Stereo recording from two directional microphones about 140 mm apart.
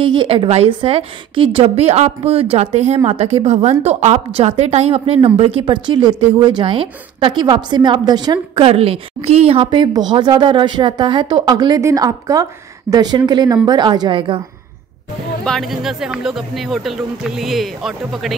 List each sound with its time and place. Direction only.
0.0 s a woman's voice: 40° right (ahead or behind)
15.4 s speech: centre (ahead or behind)